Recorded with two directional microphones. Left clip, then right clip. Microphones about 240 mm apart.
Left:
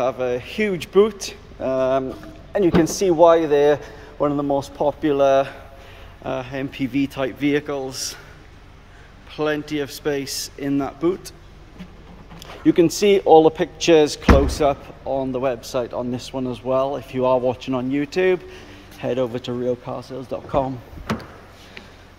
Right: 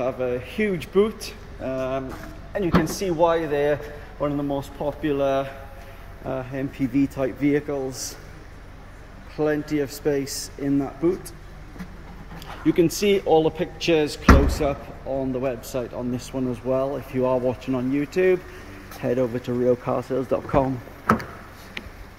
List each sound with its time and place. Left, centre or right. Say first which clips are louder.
0.0 s speech: left 4 dB; centre
7.9 s a man's voice: left 5 dB; centre
9.5 s a man's voice: even; centre
10.8 s speech: left 3 dB; centre
12.4 s speech: left 4 dB; centre
20.0 s speech: right 6 dB; centre